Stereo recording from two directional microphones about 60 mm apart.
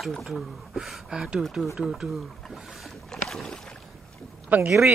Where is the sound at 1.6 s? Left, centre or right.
Centre.